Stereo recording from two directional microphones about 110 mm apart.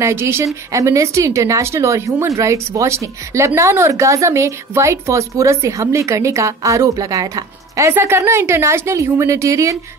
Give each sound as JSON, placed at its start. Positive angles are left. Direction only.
{"t": 0.0, "sound": "a woman's voice", "side_deg": -25}